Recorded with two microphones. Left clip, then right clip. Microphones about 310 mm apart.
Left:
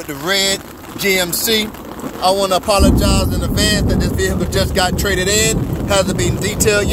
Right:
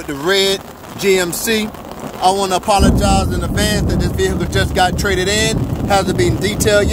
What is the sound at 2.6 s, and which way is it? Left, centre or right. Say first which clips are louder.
Speech: right 1 dB; centre.